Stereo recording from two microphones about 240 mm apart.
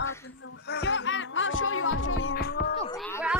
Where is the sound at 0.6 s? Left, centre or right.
Left.